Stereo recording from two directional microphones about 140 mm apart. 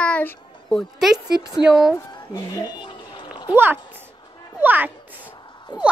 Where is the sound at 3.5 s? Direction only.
15° right (ahead or behind).